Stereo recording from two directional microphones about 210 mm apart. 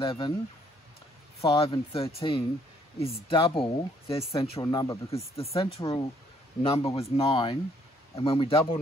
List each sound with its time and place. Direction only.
0.0 s speech: 25° left (ahead or behind)
1.4 s speech: 25° left (ahead or behind)
5.4 s speech: 30° left (ahead or behind)